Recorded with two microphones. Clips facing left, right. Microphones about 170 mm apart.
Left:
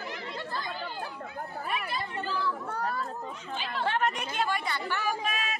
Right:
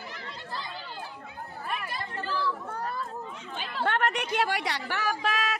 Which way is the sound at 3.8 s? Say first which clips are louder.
Right 2 dB; 65° right (ahead or behind).